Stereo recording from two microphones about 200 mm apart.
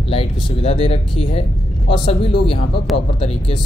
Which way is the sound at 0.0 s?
25° left (ahead or behind).